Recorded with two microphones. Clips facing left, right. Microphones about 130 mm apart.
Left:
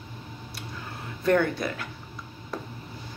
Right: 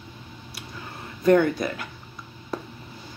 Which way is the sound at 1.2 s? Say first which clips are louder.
Right 4 dB; 5° right (ahead or behind).